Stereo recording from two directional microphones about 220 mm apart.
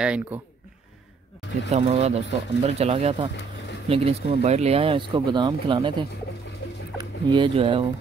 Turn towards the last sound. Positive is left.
turn(degrees=-25)  # may be behind; listen again after turning